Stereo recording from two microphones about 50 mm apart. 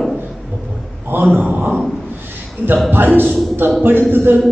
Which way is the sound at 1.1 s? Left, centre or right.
Right.